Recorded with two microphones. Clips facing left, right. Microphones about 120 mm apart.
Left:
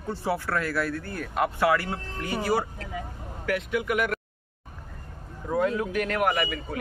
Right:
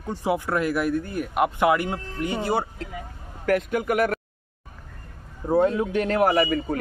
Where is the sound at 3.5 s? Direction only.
45° right (ahead or behind).